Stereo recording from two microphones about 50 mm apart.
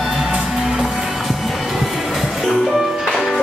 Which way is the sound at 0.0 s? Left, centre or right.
Centre.